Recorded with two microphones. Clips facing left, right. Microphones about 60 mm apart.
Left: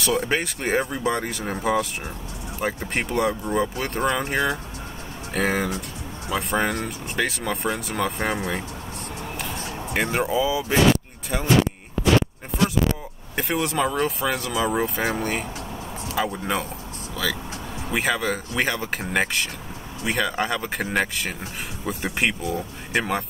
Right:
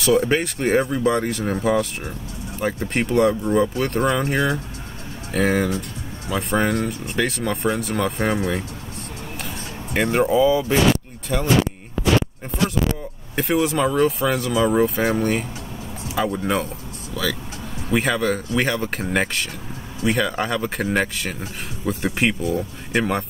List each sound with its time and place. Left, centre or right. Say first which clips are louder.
0.0 s speech: right 5 dB; centre
9.9 s speech: right 5 dB; centre
13.4 s speech: right 4 dB; centre